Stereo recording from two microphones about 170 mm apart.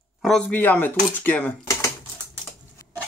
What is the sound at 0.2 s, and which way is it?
Speech, 5° left (ahead or behind).